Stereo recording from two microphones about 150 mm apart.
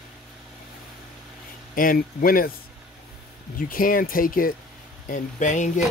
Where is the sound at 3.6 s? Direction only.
65° left (ahead or behind).